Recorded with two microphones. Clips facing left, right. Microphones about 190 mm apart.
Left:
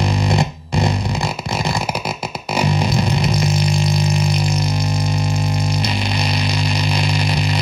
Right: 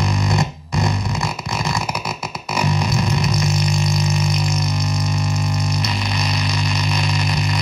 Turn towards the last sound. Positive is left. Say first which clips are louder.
# left 2 dB
turn(degrees=30)  # may be behind; listen again after turning